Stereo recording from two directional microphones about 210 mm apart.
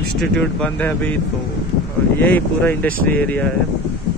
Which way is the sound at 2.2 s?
10° left (ahead or behind).